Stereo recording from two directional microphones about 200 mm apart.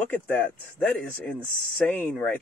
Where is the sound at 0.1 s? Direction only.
10° left (ahead or behind).